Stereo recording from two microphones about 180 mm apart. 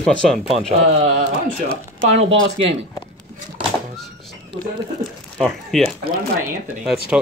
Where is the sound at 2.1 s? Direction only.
35° right (ahead or behind).